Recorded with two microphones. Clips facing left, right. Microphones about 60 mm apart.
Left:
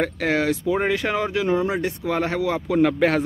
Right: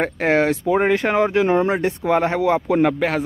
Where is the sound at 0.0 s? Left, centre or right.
Right.